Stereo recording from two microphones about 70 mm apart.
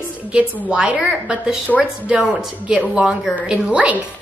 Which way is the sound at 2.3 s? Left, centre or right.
Centre.